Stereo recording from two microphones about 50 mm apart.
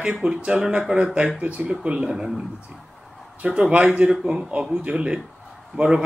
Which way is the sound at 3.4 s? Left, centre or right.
Centre.